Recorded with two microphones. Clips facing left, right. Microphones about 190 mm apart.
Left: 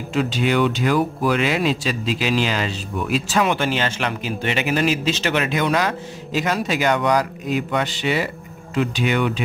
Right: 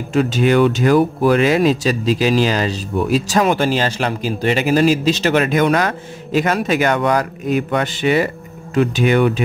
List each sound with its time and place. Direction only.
0.1 s speech: 45° right (ahead or behind)